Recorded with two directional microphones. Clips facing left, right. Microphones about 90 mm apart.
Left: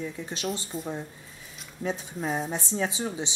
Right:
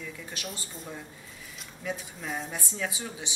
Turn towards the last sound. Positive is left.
turn(degrees=30)  # may be behind; listen again after turning